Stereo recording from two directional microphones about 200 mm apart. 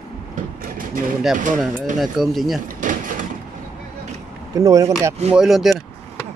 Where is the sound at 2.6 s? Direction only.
40° right (ahead or behind).